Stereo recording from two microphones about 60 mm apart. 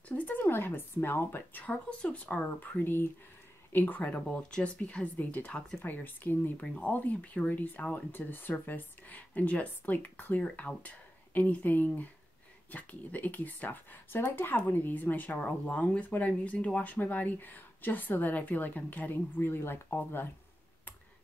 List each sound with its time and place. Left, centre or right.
0.1 s speech: left
1.6 s speech: left
2.8 s speech: left
6.6 s speech: centre; by 20.2 s left